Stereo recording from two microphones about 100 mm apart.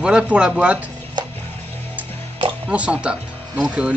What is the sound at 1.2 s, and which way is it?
Music, 45° right (ahead or behind).